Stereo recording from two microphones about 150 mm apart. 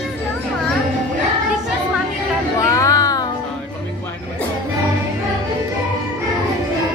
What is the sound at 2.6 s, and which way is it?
Music, 20° left (ahead or behind).